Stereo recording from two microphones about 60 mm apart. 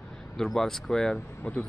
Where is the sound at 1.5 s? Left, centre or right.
Centre.